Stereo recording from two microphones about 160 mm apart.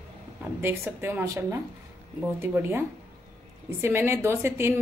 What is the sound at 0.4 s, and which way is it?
A woman's voice, 15° right (ahead or behind).